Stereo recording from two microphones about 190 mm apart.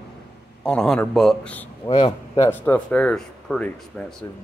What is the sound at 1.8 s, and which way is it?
Speech, 25° left (ahead or behind).